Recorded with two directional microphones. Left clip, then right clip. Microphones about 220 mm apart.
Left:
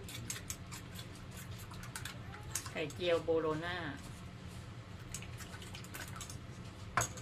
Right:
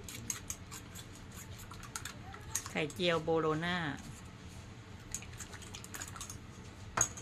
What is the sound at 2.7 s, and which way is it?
Speech, 45° right (ahead or behind).